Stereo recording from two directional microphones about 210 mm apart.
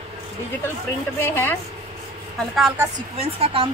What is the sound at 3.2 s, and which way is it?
Speech, 30° right (ahead or behind).